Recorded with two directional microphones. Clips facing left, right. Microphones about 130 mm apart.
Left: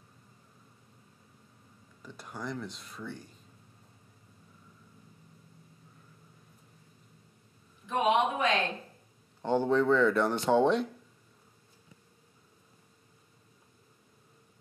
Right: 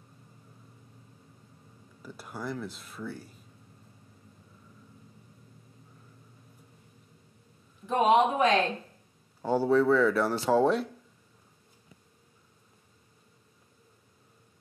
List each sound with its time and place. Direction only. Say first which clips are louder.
2.0 s speech: right 2 dB; 5° right (ahead or behind)
7.8 s a sound: right 4 dB; 35° right (ahead or behind)
9.4 s speech: right 2 dB; 5° right (ahead or behind)